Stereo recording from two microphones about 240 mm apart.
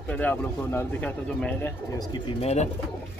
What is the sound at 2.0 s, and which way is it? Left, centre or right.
Speech, centre.